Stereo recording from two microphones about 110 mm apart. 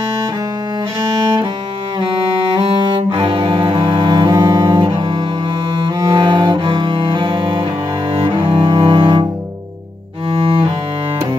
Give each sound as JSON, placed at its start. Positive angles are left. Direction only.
{"t": 2.8, "sound": "cello", "side_deg": -45}
{"t": 4.7, "sound": "cello", "side_deg": -45}
{"t": 10.4, "sound": "cello", "side_deg": -55}